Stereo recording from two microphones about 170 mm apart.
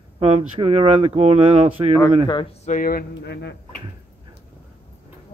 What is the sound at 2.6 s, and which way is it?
Speech, 50° left (ahead or behind).